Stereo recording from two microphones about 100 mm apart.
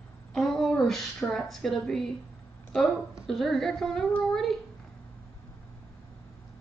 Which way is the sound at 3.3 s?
5° left (ahead or behind).